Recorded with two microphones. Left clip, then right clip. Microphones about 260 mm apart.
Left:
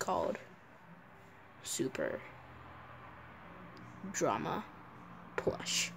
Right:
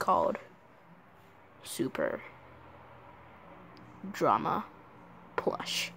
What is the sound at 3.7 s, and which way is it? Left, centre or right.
Speech, centre.